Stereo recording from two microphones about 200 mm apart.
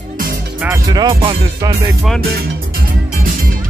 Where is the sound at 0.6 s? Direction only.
15° right (ahead or behind).